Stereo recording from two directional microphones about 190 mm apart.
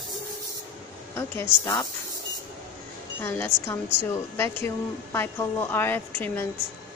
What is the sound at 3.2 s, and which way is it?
A woman's voice, 10° left (ahead or behind).